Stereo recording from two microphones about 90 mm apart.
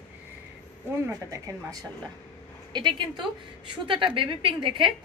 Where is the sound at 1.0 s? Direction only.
40° right (ahead or behind).